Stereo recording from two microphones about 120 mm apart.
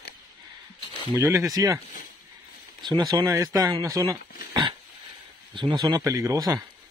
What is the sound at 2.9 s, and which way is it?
A man's voice, 35° right (ahead or behind).